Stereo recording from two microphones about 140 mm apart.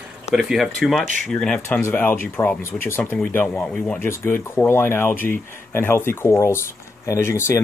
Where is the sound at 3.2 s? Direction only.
5° left (ahead or behind).